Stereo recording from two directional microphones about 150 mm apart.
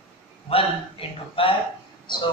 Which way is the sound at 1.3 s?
35° left (ahead or behind).